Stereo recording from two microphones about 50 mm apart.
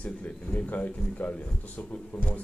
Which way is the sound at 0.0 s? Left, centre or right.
Left.